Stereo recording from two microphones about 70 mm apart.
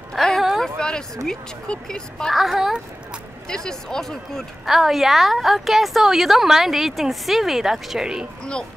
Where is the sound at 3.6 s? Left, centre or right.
Centre.